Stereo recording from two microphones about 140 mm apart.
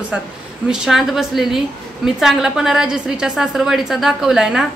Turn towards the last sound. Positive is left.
turn(degrees=-5)  # may be behind; listen again after turning